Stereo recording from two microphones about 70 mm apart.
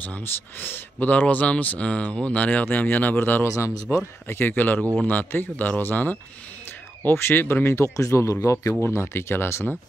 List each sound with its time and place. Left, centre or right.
0.0 s speech: left
3.4 s a man's voice: left
4.3 s a man's voice: left